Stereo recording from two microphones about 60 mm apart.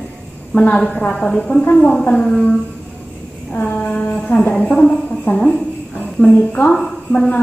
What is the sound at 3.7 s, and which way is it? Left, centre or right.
Female singing, left.